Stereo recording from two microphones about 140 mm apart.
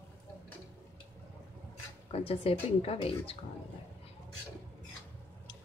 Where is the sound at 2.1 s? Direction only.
45° left (ahead or behind).